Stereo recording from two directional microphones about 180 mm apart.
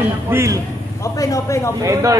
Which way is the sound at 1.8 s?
20° right (ahead or behind).